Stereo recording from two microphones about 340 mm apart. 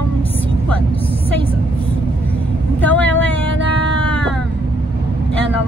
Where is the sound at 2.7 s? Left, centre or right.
Centre.